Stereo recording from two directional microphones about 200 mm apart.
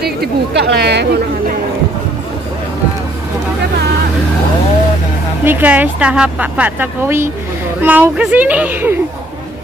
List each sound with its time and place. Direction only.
0.0 s speech: 55° right (ahead or behind)
5.4 s a woman's voice: 10° right (ahead or behind)